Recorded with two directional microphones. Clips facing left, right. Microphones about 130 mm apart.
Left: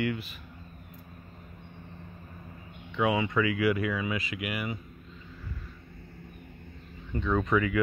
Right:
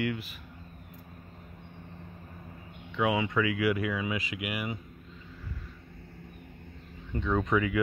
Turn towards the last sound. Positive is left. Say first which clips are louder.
# left 1 dB
turn(degrees=-15)  # may be behind; listen again after turning